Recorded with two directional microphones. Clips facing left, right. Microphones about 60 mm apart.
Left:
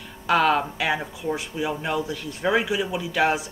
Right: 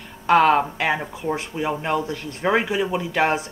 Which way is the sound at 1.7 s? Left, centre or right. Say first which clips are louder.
Right 4 dB; right.